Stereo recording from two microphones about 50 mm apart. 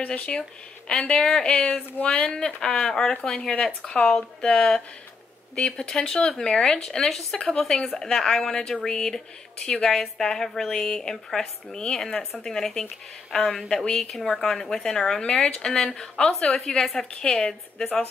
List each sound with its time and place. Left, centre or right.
0.0 s a woman's voice: left